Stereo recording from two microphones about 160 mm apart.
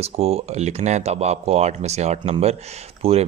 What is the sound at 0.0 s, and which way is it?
Speech, 40° right (ahead or behind).